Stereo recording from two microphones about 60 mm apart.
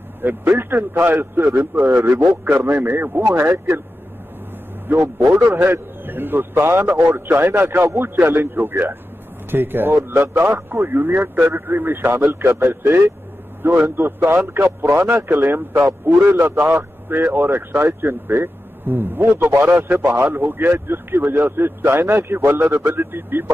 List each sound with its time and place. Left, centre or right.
0.2 s a man's voice: right
4.8 s a man's voice: right